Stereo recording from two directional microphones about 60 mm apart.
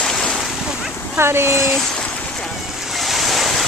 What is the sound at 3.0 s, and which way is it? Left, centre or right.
Waves, centre.